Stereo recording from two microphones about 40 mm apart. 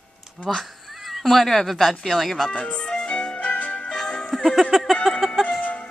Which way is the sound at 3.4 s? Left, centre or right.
Left.